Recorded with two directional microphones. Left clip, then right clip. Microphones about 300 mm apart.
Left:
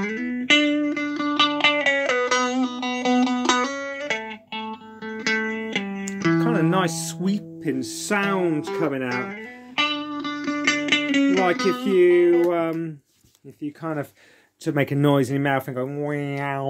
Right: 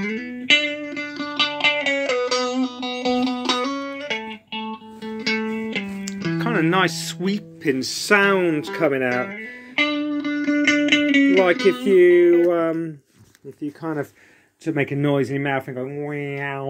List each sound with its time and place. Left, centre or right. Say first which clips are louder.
0.0 s music: left 1 dB; centre
1.9 s music: left 1 dB; left
3.2 s music: left 1 dB; centre
6.3 s speech: right 2 dB; centre
7.6 s speech: right 6 dB; centre
9.1 s music: right 4 dB; left
11.9 s speech: right 3 dB; centre
14.6 s speech: even; centre